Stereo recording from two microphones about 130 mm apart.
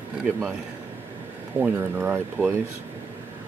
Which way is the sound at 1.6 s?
15° right (ahead or behind).